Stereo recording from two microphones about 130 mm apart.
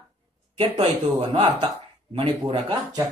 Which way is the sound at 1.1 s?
40° right (ahead or behind).